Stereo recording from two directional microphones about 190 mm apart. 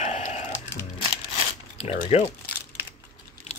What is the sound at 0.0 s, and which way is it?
Music, 35° left (ahead or behind).